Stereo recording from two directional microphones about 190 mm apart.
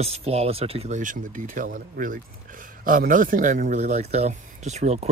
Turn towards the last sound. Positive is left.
turn(degrees=-35)  # may be behind; listen again after turning